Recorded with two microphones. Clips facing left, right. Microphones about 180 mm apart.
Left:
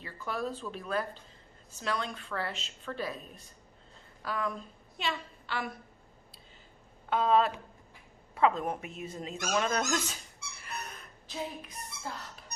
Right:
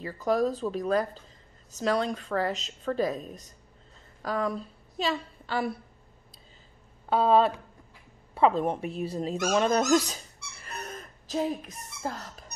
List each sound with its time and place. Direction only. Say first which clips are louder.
0.0 s a woman's voice: right 10 dB; 40° right (ahead or behind)
7.1 s a woman's voice: right 4 dB; 35° right (ahead or behind)
10.6 s a sound: right 4 dB; 40° right (ahead or behind)